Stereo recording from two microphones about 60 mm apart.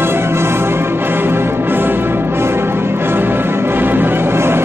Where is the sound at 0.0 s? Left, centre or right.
Right.